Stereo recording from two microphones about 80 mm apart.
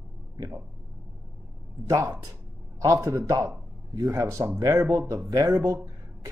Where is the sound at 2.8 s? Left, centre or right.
Right.